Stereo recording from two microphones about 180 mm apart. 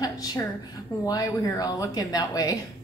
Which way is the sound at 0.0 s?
20° left (ahead or behind).